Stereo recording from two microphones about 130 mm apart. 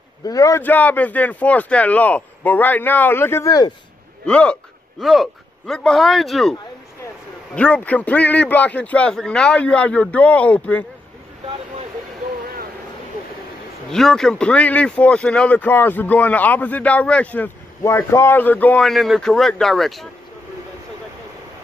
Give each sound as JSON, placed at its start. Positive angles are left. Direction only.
{"t": 0.2, "sound": "a man's voice", "side_deg": 25}
{"t": 0.6, "sound": "speech", "side_deg": 15}
{"t": 4.3, "sound": "speech", "side_deg": 10}
{"t": 7.5, "sound": "speech", "side_deg": 10}
{"t": 13.9, "sound": "speech", "side_deg": 5}
{"t": 18.8, "sound": "speech", "side_deg": 0}